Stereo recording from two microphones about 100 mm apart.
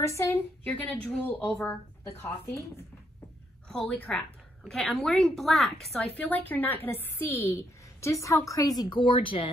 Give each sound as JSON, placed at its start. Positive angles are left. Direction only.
{"t": 0.0, "sound": "a woman's voice", "side_deg": 25}
{"t": 1.0, "sound": "speech", "side_deg": 15}
{"t": 2.2, "sound": "a woman's voice", "side_deg": 25}
{"t": 3.6, "sound": "a woman's voice", "side_deg": 5}
{"t": 4.6, "sound": "a woman's voice", "side_deg": 0}
{"t": 6.1, "sound": "a woman's voice", "side_deg": 15}